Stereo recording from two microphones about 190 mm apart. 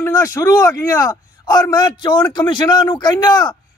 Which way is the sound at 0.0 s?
15° left (ahead or behind).